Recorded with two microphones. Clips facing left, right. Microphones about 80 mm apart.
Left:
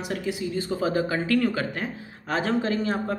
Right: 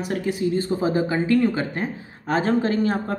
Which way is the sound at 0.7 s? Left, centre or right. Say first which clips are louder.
Right 3 dB; right.